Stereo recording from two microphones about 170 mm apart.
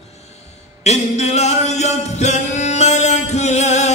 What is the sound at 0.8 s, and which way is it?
Music, 40° left (ahead or behind).